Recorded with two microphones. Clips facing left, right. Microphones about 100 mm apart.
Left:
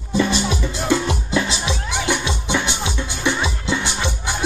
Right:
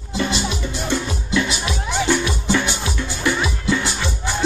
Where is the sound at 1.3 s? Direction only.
30° left (ahead or behind).